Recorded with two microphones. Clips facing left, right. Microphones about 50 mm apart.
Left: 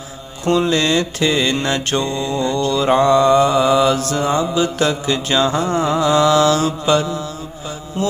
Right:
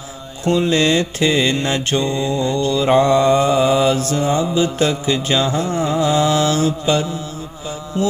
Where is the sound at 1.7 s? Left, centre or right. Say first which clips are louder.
Even; centre.